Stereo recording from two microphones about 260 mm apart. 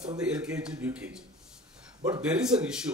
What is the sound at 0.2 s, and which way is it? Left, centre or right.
A man's voice, centre.